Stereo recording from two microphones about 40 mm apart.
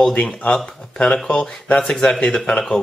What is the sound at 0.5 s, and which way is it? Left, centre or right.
Speech, centre.